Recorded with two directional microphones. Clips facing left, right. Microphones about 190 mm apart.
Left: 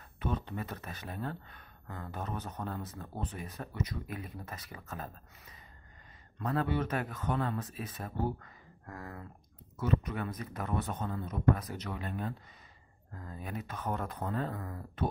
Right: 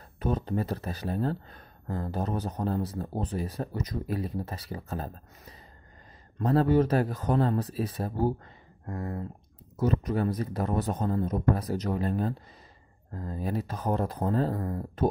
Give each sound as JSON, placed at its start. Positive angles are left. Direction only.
{"t": 0.2, "sound": "speech", "side_deg": -40}
{"t": 9.8, "sound": "speech", "side_deg": -40}